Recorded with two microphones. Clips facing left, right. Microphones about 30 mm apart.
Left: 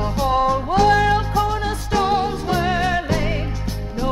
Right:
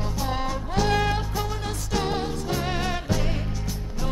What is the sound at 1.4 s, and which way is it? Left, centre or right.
Music, left.